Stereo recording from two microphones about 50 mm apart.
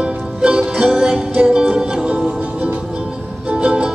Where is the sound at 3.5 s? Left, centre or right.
Right.